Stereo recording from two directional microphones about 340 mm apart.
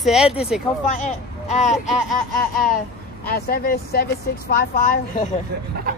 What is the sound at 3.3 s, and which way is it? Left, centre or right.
Speech, left.